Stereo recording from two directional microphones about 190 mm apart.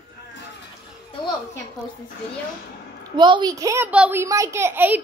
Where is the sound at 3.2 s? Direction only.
25° right (ahead or behind).